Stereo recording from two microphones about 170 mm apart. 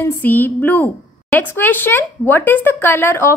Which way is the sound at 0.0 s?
10° left (ahead or behind).